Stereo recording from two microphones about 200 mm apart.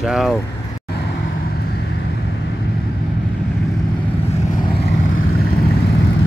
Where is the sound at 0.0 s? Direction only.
Centre (ahead or behind).